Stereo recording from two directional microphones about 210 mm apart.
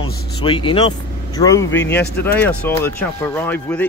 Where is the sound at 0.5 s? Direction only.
25° left (ahead or behind).